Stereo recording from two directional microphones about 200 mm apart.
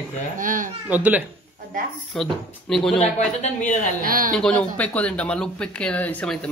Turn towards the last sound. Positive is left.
turn(degrees=5)  # may be behind; listen again after turning